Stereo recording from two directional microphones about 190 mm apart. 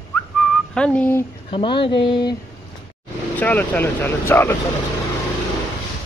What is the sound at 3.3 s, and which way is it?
Speech, 10° left (ahead or behind).